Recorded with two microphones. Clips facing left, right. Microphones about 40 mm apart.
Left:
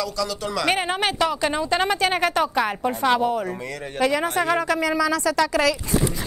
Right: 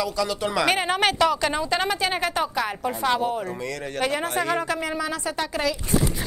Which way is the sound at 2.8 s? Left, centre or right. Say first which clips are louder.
Left 2 dB; centre.